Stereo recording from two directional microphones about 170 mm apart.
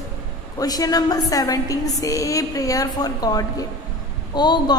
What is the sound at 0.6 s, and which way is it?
A woman's voice, 20° left (ahead or behind).